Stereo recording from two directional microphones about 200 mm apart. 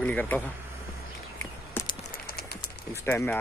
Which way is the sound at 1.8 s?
10° left (ahead or behind).